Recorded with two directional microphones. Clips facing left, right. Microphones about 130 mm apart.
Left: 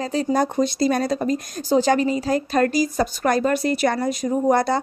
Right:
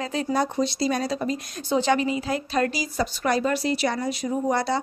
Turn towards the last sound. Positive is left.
turn(degrees=50)  # may be behind; listen again after turning